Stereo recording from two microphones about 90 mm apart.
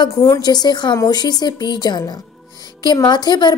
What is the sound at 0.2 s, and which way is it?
A woman's voice, 45° left (ahead or behind).